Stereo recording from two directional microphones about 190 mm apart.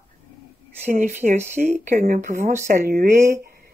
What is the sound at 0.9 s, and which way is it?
Speech, 45° right (ahead or behind).